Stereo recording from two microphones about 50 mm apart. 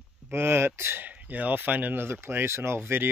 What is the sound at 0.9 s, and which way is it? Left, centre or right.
Speech, right.